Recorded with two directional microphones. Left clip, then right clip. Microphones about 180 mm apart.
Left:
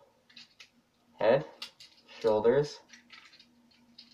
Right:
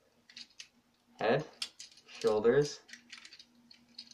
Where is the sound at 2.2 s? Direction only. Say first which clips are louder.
Left 3 dB; 20° right (ahead or behind).